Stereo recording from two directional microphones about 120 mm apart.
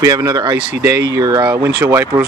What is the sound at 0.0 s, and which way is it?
Speech, 25° right (ahead or behind).